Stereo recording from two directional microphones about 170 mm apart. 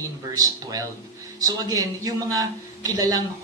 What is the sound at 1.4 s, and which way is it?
A man's voice, 20° right (ahead or behind).